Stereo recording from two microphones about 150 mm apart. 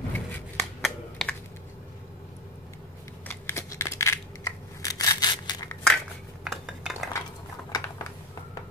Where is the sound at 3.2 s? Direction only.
15° left (ahead or behind).